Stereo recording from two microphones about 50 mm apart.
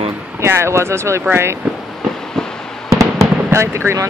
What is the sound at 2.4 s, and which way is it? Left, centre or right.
Fireworks, centre.